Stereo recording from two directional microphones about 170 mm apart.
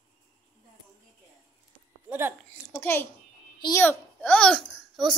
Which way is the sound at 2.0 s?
10° right (ahead or behind).